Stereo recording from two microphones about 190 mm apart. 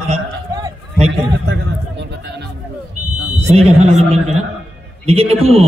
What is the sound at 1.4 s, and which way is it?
Music, 70° right (ahead or behind).